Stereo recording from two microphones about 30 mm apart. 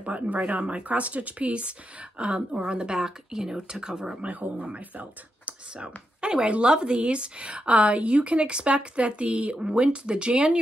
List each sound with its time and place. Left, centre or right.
0.0 s speech: right
4.6 s speech: right
6.2 s speech: right